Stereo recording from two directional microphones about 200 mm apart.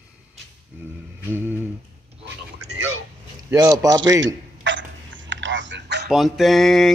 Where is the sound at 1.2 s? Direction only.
10° right (ahead or behind).